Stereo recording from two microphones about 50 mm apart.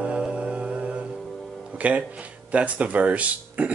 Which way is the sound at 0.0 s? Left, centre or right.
Right.